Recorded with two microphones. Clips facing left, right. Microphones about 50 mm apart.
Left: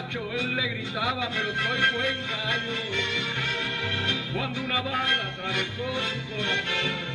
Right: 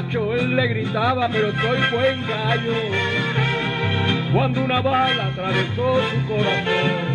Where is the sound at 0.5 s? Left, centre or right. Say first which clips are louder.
Right 8 dB; right.